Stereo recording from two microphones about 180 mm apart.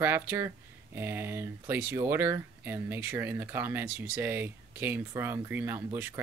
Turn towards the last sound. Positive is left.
turn(degrees=-10)  # may be behind; listen again after turning